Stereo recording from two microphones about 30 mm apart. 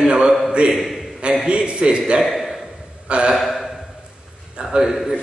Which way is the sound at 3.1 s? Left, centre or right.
Right.